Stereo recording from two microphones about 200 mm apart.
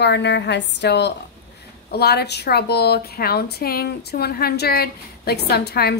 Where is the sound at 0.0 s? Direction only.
60° left (ahead or behind).